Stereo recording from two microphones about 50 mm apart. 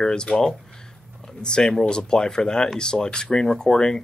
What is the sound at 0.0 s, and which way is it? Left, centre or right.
Speech, centre.